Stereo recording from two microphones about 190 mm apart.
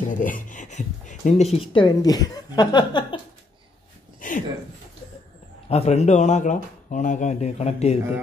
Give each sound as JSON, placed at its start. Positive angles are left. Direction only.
{"t": 0.1, "sound": "speech", "side_deg": 45}
{"t": 1.7, "sound": "speech", "side_deg": 25}
{"t": 4.2, "sound": "a sound", "side_deg": 45}
{"t": 5.7, "sound": "speech", "side_deg": 35}